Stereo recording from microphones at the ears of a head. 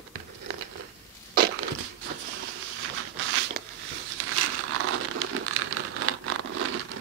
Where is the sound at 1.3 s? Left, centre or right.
Right.